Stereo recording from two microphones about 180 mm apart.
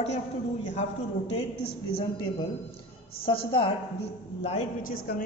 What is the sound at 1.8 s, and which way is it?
A woman's voice, 30° left (ahead or behind).